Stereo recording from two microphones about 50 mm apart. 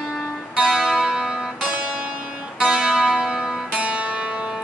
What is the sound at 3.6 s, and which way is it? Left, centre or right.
Music, right.